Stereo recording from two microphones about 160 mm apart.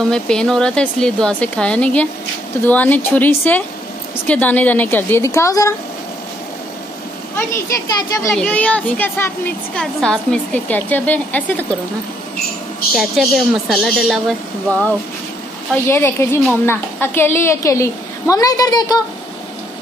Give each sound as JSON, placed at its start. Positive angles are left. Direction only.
{"t": 0.1, "sound": "a woman's voice", "side_deg": 5}
{"t": 7.3, "sound": "a woman's voice", "side_deg": 20}
{"t": 8.4, "sound": "a woman's voice", "side_deg": 10}
{"t": 12.9, "sound": "a woman's voice", "side_deg": 0}